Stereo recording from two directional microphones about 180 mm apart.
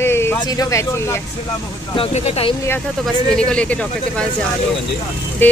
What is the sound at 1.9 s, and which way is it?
Speech, 35° left (ahead or behind).